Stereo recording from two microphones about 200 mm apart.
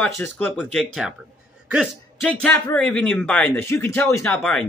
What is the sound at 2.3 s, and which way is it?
Speech, 10° left (ahead or behind).